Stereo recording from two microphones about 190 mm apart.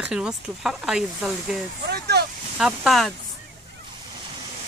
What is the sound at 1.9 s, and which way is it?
Vehicle, 60° right (ahead or behind).